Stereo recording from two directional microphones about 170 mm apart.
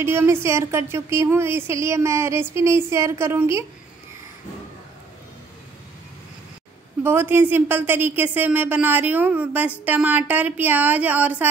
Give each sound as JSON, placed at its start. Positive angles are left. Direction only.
{"t": 0.0, "sound": "speech", "side_deg": -15}
{"t": 7.0, "sound": "speech", "side_deg": -10}